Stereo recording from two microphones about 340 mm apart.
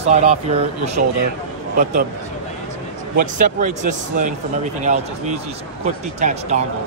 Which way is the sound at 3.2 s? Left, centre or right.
Right.